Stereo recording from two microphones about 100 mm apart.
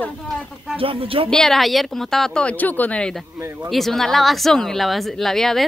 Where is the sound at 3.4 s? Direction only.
25° right (ahead or behind).